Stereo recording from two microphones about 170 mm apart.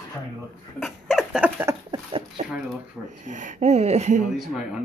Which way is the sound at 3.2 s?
45° right (ahead or behind).